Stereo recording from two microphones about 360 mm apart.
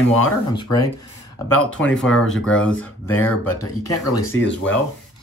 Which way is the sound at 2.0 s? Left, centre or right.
Centre.